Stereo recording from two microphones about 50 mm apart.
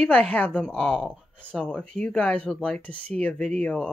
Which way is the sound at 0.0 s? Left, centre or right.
Left.